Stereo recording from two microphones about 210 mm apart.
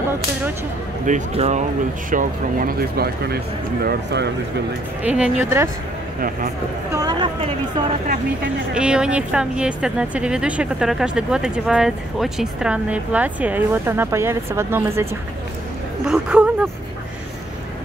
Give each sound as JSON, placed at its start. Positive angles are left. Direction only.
{"t": 1.0, "sound": "speech", "side_deg": -30}
{"t": 5.0, "sound": "speech", "side_deg": -5}
{"t": 6.9, "sound": "a sound", "side_deg": -20}
{"t": 8.7, "sound": "a woman's voice", "side_deg": -5}
{"t": 16.1, "sound": "a woman's voice", "side_deg": -5}